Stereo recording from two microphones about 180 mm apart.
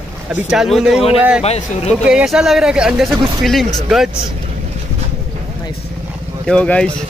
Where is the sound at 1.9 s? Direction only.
5° right (ahead or behind).